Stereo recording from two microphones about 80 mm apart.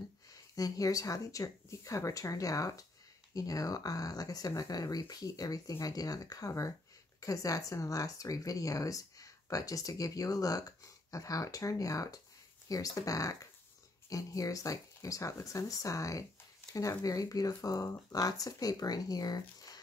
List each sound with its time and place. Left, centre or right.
0.3 s speech: left